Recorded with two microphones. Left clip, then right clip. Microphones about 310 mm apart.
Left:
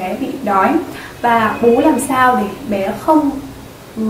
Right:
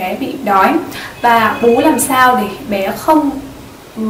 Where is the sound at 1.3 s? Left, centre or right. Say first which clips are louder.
Right 2 dB; centre.